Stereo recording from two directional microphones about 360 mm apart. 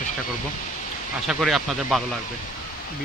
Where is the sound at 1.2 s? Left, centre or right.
Centre.